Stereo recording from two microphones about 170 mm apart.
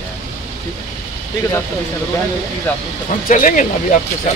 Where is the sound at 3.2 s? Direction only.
50° left (ahead or behind).